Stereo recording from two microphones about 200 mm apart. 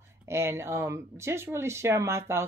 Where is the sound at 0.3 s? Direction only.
10° right (ahead or behind).